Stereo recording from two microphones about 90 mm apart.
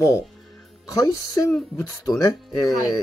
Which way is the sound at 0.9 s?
40° left (ahead or behind).